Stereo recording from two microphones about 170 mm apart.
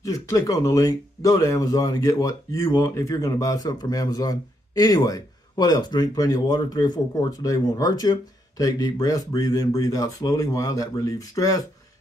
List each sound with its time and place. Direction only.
0.0 s speech: 20° left (ahead or behind)